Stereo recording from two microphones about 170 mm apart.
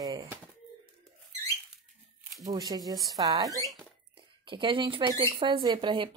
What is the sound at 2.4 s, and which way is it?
Speech, 20° right (ahead or behind).